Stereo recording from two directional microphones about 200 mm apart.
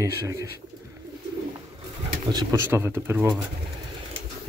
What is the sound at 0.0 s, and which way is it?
Speech, 15° right (ahead or behind).